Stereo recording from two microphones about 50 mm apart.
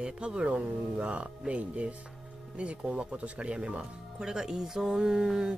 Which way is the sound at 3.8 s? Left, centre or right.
Centre.